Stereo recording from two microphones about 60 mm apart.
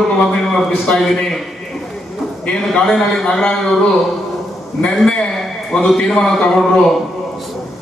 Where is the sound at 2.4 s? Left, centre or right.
Centre.